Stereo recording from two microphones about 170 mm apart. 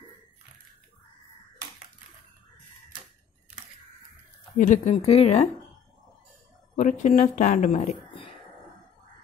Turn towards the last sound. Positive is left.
turn(degrees=40)  # may be behind; listen again after turning